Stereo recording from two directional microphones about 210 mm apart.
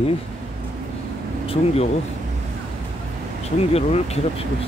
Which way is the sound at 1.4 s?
25° left (ahead or behind).